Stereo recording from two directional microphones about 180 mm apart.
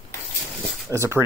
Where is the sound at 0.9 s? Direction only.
15° right (ahead or behind).